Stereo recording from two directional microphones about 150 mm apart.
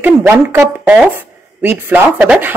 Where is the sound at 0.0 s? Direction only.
15° right (ahead or behind).